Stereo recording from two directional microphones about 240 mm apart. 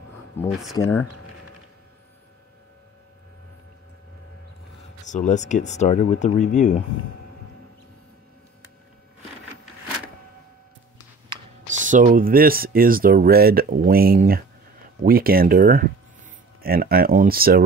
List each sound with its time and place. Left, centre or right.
0.5 s speech: centre
5.0 s speech: left
11.7 s speech: right